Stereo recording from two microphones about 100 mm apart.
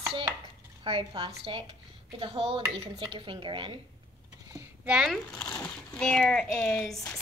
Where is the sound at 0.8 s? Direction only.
60° right (ahead or behind).